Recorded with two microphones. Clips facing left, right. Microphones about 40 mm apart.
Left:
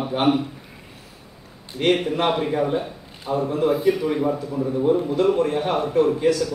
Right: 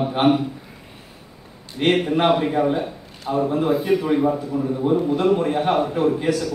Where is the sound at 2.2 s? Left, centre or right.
Centre.